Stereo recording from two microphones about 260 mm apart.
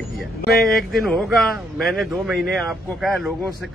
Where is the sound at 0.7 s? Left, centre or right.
Centre.